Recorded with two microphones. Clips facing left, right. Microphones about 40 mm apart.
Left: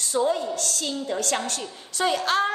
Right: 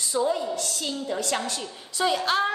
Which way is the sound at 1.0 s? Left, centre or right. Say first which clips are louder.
Left 1 dB; left.